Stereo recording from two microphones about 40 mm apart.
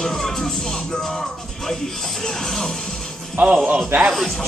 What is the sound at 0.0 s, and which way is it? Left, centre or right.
Music, centre.